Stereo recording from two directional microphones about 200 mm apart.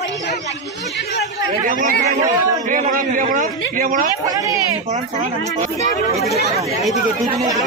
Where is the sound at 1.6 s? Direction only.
40° right (ahead or behind).